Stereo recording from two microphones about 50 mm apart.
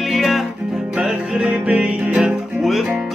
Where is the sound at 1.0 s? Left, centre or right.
Right.